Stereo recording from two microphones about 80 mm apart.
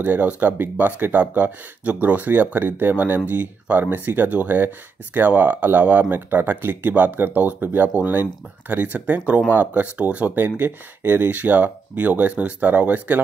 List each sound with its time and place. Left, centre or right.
0.0 s speech: right